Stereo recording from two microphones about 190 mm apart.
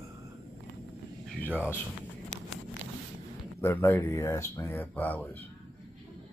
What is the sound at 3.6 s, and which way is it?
Speech, 10° left (ahead or behind).